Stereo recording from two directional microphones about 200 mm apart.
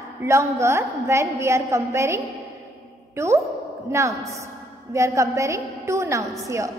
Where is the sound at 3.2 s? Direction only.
15° right (ahead or behind).